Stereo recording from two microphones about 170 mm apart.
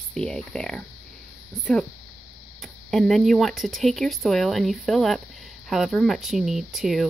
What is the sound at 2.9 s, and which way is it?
Speech, centre (ahead or behind).